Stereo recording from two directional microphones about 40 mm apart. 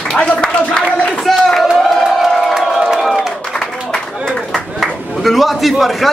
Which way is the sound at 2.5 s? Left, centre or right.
Centre.